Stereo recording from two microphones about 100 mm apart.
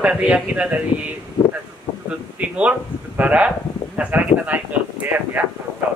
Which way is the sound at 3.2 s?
15° right (ahead or behind).